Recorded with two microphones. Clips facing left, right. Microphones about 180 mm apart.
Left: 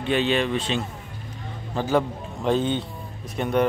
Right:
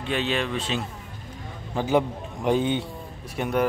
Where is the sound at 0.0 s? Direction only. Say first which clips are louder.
Left 4 dB; centre (ahead or behind).